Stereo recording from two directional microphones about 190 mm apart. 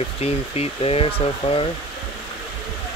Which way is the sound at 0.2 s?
30° left (ahead or behind).